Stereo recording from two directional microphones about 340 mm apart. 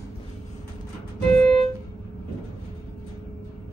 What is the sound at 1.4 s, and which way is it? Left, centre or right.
Music, centre.